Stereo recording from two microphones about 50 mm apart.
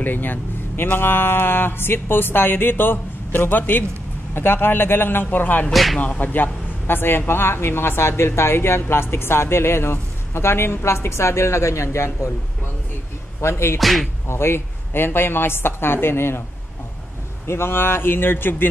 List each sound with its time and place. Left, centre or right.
0.0 s a man's voice: left
5.7 s speech: centre
5.9 s a man's voice: left
13.4 s speech: left
13.7 s speech: centre
14.2 s a man's voice: left
17.5 s a man's voice: left